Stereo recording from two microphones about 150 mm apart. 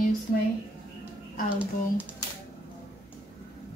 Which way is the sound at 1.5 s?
10° right (ahead or behind).